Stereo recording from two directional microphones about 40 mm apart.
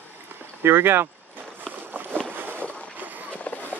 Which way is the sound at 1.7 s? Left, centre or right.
Right.